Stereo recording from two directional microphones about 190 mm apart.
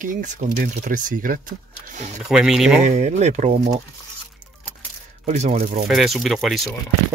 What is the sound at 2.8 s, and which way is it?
Speech, 35° right (ahead or behind).